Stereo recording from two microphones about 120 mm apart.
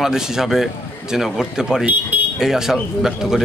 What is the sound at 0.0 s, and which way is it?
Speech, 5° right (ahead or behind).